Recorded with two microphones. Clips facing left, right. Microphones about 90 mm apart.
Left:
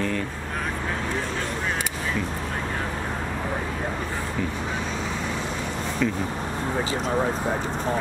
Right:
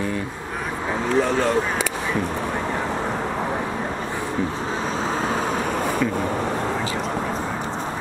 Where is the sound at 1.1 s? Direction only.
90° right.